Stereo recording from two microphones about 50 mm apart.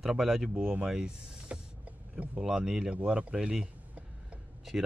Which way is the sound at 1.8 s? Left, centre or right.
Right.